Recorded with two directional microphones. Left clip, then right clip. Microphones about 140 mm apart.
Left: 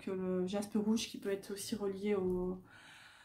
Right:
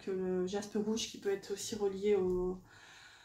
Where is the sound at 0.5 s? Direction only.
25° left (ahead or behind).